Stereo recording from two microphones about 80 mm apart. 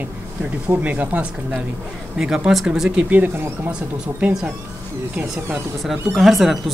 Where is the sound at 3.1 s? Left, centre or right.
Right.